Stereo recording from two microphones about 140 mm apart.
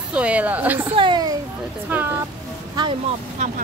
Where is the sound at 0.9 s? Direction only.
35° right (ahead or behind).